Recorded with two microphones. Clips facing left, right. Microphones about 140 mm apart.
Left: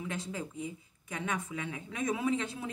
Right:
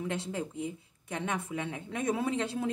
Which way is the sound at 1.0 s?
30° right (ahead or behind).